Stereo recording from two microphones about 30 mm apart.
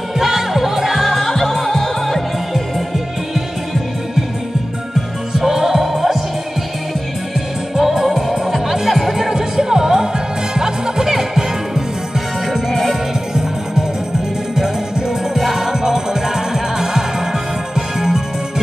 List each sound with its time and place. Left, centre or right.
0.2 s music: centre
1.1 s music: centre
3.3 s music: centre
5.4 s music: centre
7.7 s music: centre
9.3 s music: centre
14.5 s music: centre
15.3 s music: centre
15.6 s music: centre